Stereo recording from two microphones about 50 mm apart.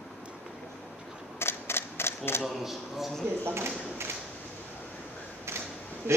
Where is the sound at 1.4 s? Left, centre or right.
Left.